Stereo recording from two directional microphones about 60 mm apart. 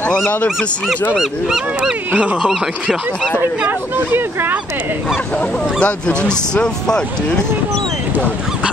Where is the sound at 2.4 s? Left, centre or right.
Centre.